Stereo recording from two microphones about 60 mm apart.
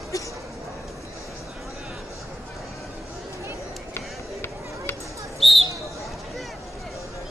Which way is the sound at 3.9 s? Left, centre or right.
Left.